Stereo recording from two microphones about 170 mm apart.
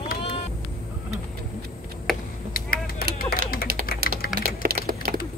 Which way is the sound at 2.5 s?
60° left (ahead or behind).